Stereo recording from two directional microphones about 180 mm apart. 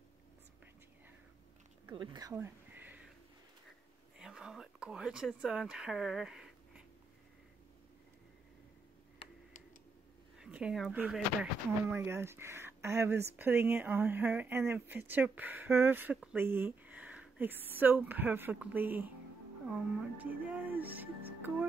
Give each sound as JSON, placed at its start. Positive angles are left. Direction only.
{"t": 1.9, "sound": "speech", "side_deg": -25}
{"t": 2.3, "sound": "a sound", "side_deg": -10}
{"t": 4.2, "sound": "speech", "side_deg": -5}
{"t": 10.4, "sound": "speech", "side_deg": -5}